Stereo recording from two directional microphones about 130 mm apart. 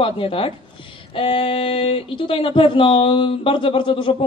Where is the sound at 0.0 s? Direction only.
45° left (ahead or behind).